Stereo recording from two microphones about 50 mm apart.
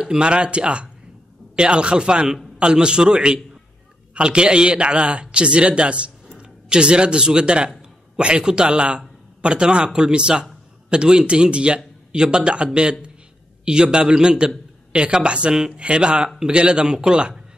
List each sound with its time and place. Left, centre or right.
0.0 s a man's voice: centre